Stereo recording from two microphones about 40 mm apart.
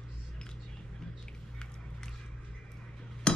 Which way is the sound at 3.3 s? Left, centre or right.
Left.